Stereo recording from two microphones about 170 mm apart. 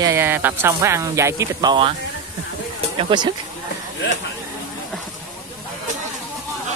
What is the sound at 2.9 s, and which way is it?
Speech, 25° right (ahead or behind).